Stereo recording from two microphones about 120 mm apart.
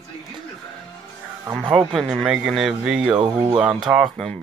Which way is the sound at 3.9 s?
5° right (ahead or behind).